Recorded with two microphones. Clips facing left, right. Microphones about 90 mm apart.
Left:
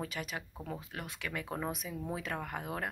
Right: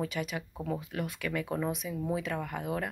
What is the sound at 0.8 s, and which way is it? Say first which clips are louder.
Speech: right 7 dB; 25° left (ahead or behind).